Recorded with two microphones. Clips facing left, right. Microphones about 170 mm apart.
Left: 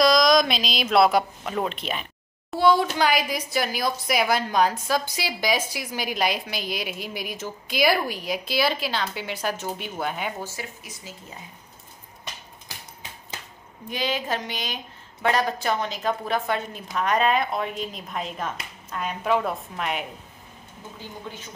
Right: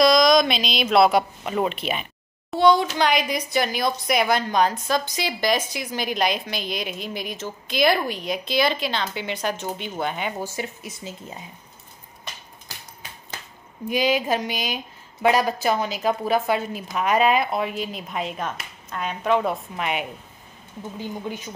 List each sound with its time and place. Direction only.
0.0 s a child's voice: centre (ahead or behind)
10.4 s speech: 20° right (ahead or behind)
13.8 s a woman's voice: 10° right (ahead or behind)